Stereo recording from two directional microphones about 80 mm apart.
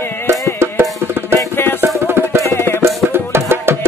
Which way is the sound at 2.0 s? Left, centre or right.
Right.